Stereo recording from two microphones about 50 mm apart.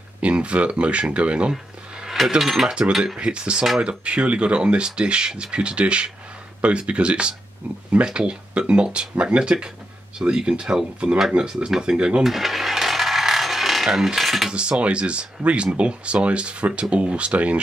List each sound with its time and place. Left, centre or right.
0.2 s speech: right
2.0 s a sound: centre
2.9 s speech: centre
3.2 s speech: right
12.2 s coin: centre
14.5 s speech: right